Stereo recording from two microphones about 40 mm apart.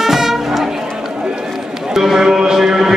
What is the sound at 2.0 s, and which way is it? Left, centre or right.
Music, centre.